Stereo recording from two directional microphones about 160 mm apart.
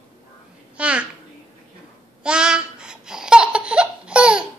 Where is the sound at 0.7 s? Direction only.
5° right (ahead or behind).